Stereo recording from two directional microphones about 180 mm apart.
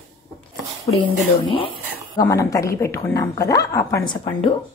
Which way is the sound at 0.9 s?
25° left (ahead or behind).